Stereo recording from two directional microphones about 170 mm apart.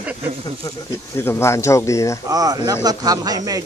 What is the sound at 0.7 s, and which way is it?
Speech, 15° left (ahead or behind).